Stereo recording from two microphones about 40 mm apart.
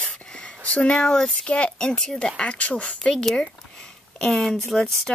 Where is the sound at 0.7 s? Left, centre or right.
Left.